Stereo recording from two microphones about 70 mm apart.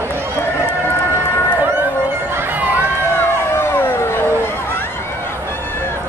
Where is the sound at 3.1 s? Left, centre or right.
Left.